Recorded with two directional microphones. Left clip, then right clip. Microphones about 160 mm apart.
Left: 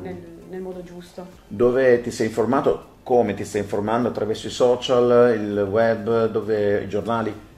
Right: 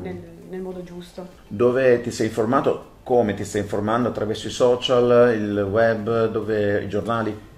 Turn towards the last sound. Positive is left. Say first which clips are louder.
# even
turn(degrees=20)  # may be behind; listen again after turning